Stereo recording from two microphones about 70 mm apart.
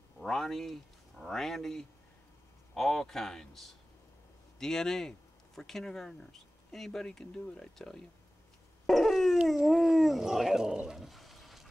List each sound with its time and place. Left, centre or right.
0.2 s a man's voice: centre